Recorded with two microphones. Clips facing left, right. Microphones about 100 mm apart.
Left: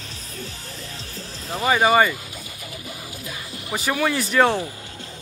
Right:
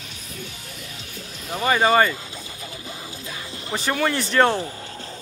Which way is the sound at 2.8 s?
30° right (ahead or behind).